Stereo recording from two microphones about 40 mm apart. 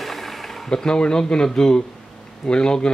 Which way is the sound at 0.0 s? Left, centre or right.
Centre.